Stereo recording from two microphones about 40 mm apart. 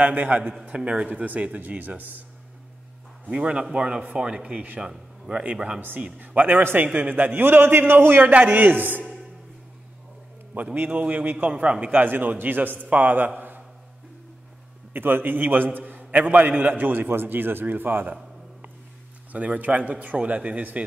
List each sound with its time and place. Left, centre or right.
0.0 s a man's voice: right
0.4 s a man's voice: centre
0.7 s a man's voice: right
3.3 s a man's voice: right
6.1 s a man's voice: right
6.6 s a man's voice: right
7.4 s a man's voice: right
8.3 s a man's voice: right
10.5 s a man's voice: right
12.0 s a man's voice: right
14.9 s a man's voice: right
19.3 s a man's voice: right